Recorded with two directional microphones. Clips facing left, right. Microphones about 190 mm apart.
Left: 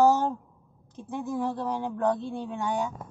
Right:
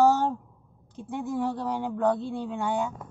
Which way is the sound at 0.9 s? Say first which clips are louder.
Right 1 dB; 15° right (ahead or behind).